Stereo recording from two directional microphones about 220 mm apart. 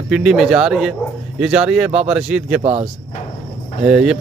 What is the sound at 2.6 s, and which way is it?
Speech, 30° right (ahead or behind).